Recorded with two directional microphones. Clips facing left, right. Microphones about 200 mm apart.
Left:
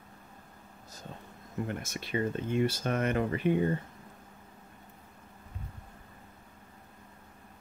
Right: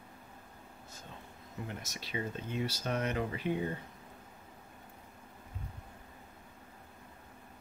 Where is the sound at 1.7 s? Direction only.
55° left (ahead or behind).